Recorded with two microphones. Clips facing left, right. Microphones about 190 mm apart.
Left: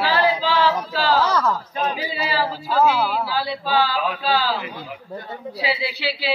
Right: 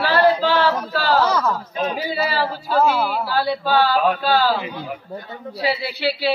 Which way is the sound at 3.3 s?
50° right (ahead or behind).